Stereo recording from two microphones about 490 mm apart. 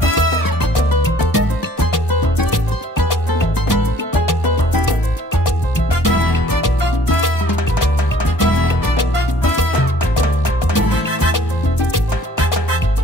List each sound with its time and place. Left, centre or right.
1.1 s music: left
6.0 s music: left
8.4 s music: left
10.7 s music: left